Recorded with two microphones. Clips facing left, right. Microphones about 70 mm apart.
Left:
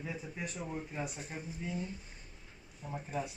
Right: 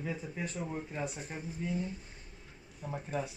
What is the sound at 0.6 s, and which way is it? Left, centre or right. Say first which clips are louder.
Speech: right 1 dB; right.